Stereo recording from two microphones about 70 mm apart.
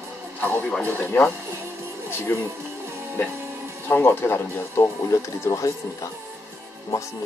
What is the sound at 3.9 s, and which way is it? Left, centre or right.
Speech, left.